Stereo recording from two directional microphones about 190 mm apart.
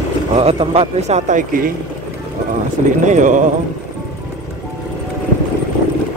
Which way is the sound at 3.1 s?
40° right (ahead or behind).